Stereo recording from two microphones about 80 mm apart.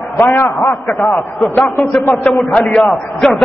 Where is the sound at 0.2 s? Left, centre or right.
Left.